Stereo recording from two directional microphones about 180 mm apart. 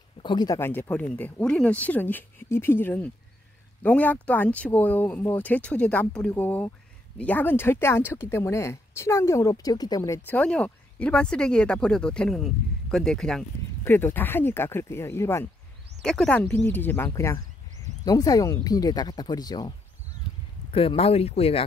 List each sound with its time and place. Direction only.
0.2 s speech: 25° left (ahead or behind)
16.0 s speech: 5° left (ahead or behind); by 19.7 s 20° left (ahead or behind)
20.7 s speech: 30° left (ahead or behind)